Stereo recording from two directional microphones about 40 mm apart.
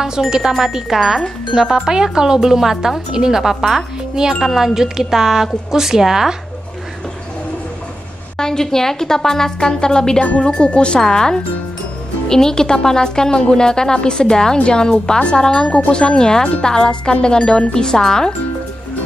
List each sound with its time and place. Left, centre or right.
0.0 s speech: centre
8.4 s a woman's voice: centre
10.4 s music: left
11.0 s a woman's voice: centre
15.1 s music: left
15.4 s a woman's voice: centre
15.9 s music: left
17.7 s a woman's voice: centre